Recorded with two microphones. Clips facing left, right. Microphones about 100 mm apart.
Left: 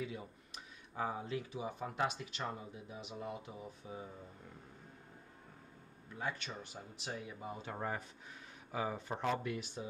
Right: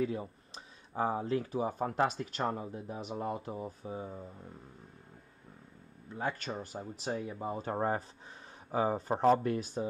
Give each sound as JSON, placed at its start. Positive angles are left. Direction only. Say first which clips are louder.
{"t": 0.0, "sound": "speech", "louder": "right 10 dB", "side_deg": -40}
{"t": 6.1, "sound": "speech", "louder": "right 6 dB", "side_deg": -40}